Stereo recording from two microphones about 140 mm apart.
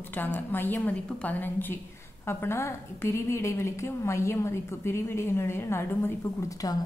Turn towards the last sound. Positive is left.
turn(degrees=15)  # may be behind; listen again after turning